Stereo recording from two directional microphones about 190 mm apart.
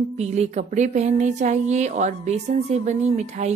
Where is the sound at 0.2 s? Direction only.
35° right (ahead or behind).